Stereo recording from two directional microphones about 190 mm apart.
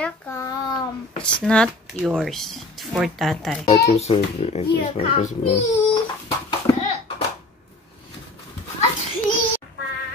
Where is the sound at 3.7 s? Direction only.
35° left (ahead or behind).